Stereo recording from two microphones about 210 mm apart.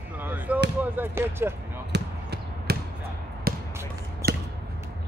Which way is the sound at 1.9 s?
50° right (ahead or behind).